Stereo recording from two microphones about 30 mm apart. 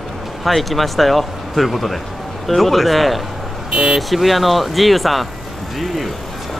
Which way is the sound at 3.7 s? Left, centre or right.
Centre.